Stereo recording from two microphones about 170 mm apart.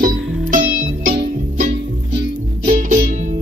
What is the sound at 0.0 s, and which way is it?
Music, 50° right (ahead or behind).